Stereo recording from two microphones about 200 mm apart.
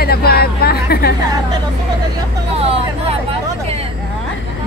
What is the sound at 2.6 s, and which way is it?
Hubbub, 30° right (ahead or behind).